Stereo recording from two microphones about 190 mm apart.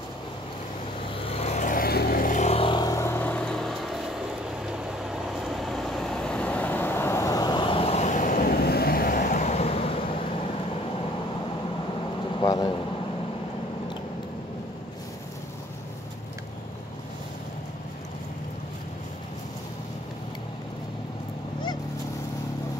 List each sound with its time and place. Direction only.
1.3 s vehicle: 35° left (ahead or behind)
12.4 s vehicle: 20° left (ahead or behind)